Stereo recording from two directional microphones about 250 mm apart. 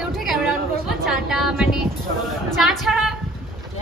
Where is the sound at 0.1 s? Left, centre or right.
Centre.